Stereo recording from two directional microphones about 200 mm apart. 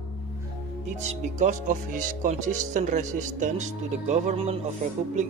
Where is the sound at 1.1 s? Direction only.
35° right (ahead or behind).